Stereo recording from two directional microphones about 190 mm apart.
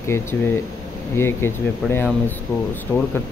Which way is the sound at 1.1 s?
10° left (ahead or behind).